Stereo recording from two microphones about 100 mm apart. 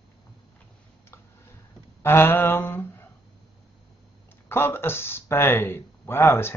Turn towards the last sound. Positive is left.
turn(degrees=25)  # may be behind; listen again after turning